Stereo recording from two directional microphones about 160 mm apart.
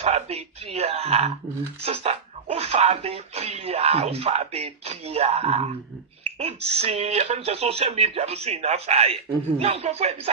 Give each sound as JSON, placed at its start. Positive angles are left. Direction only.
{"t": 0.0, "sound": "speech", "side_deg": -40}
{"t": 6.8, "sound": "speech", "side_deg": -40}